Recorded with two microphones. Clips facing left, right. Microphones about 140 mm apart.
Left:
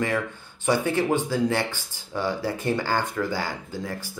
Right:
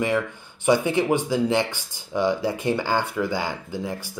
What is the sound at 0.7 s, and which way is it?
Speech, 15° right (ahead or behind).